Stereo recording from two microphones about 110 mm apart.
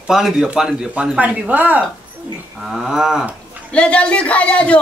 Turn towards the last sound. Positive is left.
turn(degrees=10)  # may be behind; listen again after turning